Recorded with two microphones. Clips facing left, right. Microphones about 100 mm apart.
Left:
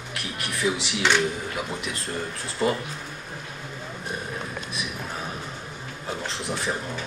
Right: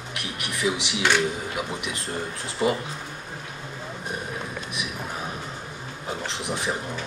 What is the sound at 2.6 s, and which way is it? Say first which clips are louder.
Speech: right 1 dB; 15° right (ahead or behind).